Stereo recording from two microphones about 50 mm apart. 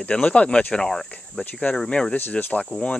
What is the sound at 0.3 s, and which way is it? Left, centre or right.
Speech, left.